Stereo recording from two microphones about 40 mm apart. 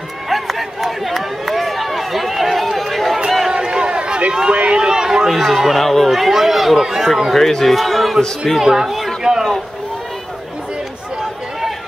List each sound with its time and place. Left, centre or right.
0.3 s run: centre
3.5 s a sound: centre
4.3 s run: right
5.3 s speech: centre
5.8 s speech: centre
7.3 s speech: centre
9.3 s a sound: centre